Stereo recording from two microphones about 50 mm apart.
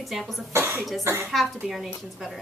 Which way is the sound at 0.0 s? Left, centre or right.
Centre.